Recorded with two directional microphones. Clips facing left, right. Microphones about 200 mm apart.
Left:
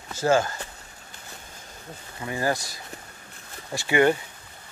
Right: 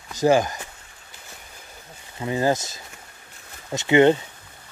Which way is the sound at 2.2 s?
20° right (ahead or behind).